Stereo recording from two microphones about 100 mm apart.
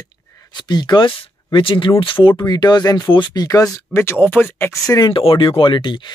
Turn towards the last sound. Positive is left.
turn(degrees=50)  # may be behind; listen again after turning